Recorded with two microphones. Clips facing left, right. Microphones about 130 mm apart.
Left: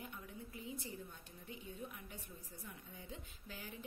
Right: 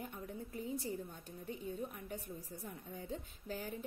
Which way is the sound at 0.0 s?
40° right (ahead or behind).